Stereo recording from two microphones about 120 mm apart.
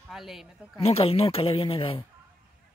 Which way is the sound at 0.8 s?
55° left (ahead or behind).